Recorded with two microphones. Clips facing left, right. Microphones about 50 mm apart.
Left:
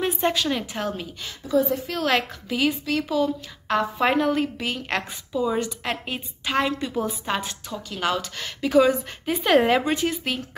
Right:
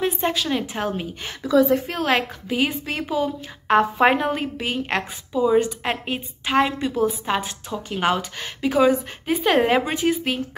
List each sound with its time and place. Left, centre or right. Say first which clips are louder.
0.0 s a woman's voice: even; centre
1.4 s a woman's voice: right 5 dB; right
2.0 s a woman's voice: even; centre
8.4 s a woman's voice: left 4 dB; centre